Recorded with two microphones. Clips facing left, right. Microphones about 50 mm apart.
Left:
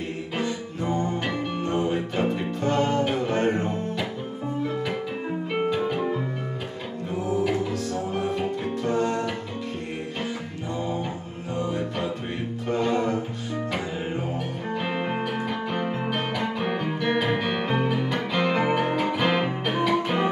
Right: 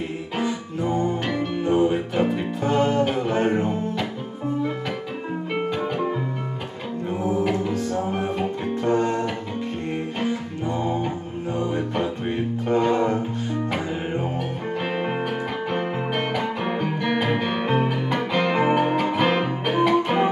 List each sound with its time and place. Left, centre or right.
0.4 s music: centre
5.5 s music: centre
7.4 s music: centre
12.6 s music: right
15.7 s music: centre